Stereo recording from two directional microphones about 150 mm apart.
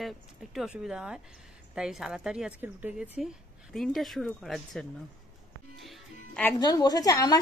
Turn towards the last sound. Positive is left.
turn(degrees=25)  # may be behind; listen again after turning